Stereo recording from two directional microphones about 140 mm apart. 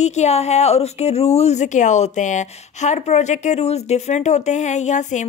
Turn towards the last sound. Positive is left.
turn(degrees=60)  # may be behind; listen again after turning